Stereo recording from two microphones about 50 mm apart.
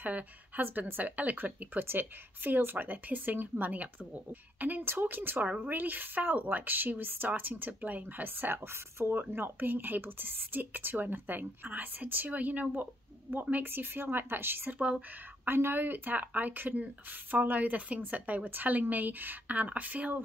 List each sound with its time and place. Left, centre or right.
0.0 s speech: right
9.2 s a woman's voice: right
14.7 s speech: right
15.4 s speech: right